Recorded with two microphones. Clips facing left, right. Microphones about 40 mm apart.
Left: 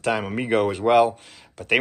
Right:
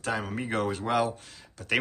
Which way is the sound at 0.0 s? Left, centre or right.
Left.